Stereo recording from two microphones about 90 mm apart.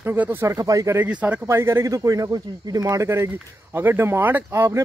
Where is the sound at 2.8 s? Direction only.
35° right (ahead or behind).